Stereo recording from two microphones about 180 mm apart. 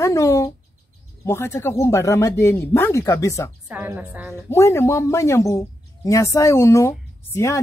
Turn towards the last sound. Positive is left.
turn(degrees=15)  # may be behind; listen again after turning